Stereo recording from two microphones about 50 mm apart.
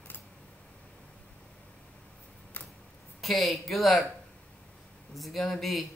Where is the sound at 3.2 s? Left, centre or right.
Centre.